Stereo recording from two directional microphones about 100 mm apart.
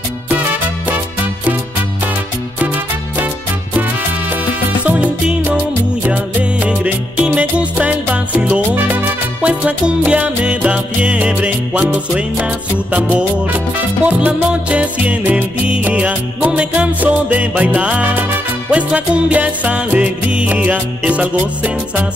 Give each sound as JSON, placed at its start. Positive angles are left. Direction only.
{"t": 3.7, "sound": "salsa music", "side_deg": -20}
{"t": 4.8, "sound": "music", "side_deg": -10}